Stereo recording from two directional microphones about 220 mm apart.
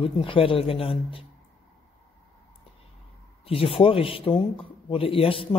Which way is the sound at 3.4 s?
25° left (ahead or behind).